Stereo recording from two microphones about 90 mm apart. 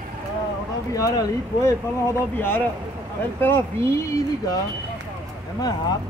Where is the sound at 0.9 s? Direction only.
40° left (ahead or behind).